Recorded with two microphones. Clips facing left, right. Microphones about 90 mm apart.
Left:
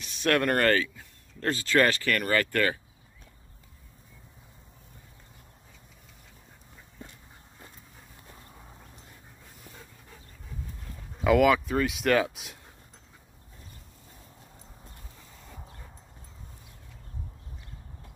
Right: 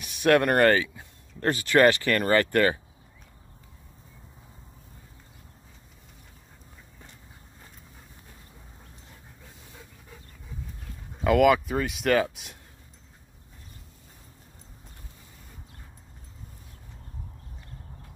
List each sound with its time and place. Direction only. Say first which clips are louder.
0.0 s speech: right 5 dB; 15° right (ahead or behind)
11.1 s speech: right 1 dB; centre (ahead or behind)